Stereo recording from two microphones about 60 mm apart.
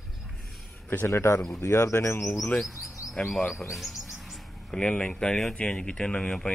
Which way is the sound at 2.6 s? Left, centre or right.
Centre.